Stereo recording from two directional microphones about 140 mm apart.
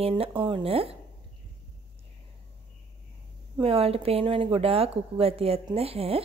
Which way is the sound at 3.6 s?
40° right (ahead or behind).